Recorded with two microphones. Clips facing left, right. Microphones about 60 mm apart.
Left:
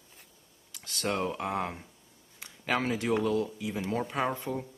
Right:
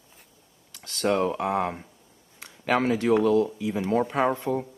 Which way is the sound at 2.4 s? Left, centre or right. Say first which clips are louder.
Right 6 dB; centre.